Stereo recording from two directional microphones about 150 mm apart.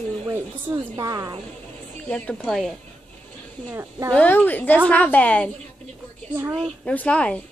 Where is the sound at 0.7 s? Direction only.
25° right (ahead or behind).